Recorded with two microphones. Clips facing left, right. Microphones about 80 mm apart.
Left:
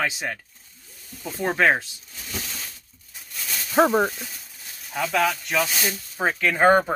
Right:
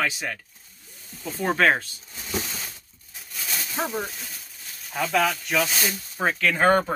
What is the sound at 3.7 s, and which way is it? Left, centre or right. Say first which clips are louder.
Speech: left 11 dB; left.